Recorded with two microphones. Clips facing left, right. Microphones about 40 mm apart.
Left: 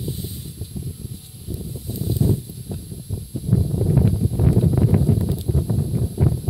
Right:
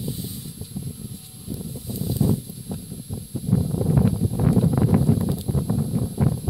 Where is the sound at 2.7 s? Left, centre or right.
Right.